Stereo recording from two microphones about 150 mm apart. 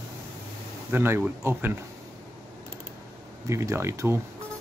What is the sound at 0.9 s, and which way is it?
Speech, 15° right (ahead or behind).